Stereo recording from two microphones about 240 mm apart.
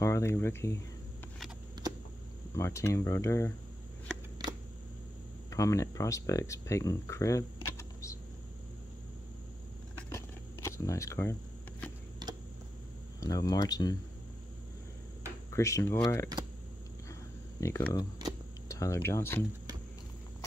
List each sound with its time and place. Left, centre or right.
0.0 s speech: centre
2.5 s speech: centre
4.4 s a sound: centre
5.5 s speech: centre
7.6 s camera: centre
9.9 s a sound: centre
13.2 s speech: centre
15.5 s speech: centre
17.6 s speech: centre